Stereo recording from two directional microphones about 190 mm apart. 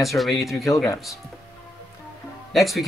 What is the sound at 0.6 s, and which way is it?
Speech, 15° left (ahead or behind).